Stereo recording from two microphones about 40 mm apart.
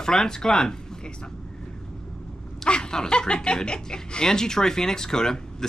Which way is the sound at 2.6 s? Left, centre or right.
Centre.